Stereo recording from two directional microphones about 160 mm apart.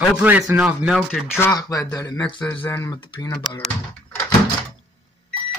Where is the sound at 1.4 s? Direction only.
20° left (ahead or behind).